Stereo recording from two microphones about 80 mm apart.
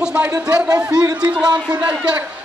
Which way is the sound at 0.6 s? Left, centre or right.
Right.